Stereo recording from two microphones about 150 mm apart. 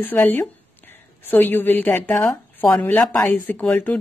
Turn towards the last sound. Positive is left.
turn(degrees=10)  # may be behind; listen again after turning